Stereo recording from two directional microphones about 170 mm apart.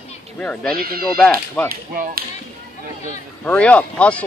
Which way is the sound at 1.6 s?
55° right (ahead or behind).